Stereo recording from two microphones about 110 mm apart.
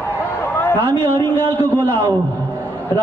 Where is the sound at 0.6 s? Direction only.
15° left (ahead or behind).